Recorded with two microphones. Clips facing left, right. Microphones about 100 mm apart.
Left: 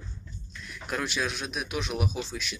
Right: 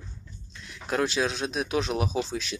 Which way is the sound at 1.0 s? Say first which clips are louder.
Right 5 dB; 30° right (ahead or behind).